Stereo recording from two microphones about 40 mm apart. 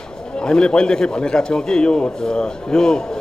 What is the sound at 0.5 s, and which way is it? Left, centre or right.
A man's voice, left.